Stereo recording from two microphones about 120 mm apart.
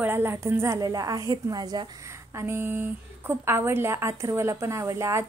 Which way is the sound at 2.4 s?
20° right (ahead or behind).